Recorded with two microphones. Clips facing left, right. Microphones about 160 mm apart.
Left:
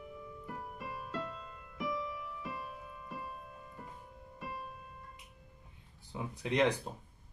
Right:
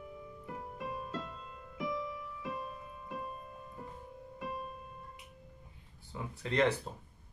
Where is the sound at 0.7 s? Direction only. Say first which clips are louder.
Right 2 dB; 25° right (ahead or behind).